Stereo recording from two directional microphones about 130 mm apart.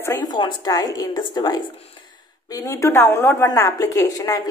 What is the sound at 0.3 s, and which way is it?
A woman's voice, 35° left (ahead or behind).